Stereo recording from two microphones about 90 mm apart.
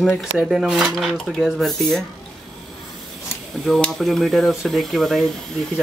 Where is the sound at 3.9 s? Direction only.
Centre (ahead or behind).